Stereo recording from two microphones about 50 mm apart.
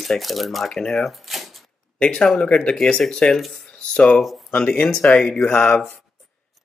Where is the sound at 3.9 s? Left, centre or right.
Left.